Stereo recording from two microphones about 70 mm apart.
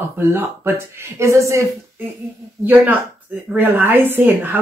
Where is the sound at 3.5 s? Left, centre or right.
Right.